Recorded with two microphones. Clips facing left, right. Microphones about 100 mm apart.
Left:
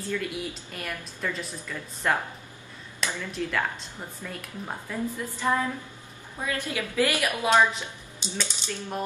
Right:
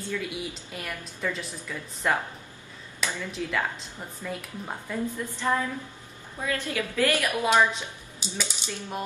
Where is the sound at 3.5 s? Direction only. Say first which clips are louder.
Even; centre (ahead or behind).